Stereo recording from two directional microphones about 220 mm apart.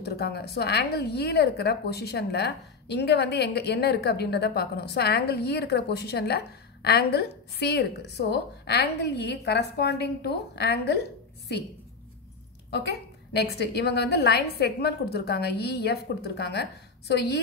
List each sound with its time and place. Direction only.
0.0 s a woman's voice: 50° left (ahead or behind)
13.3 s a woman's voice: 50° left (ahead or behind)